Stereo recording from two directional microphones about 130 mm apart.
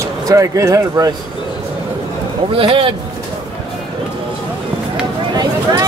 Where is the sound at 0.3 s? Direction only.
25° right (ahead or behind).